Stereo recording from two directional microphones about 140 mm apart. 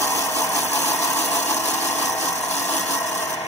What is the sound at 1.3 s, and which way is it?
Tools, 20° left (ahead or behind).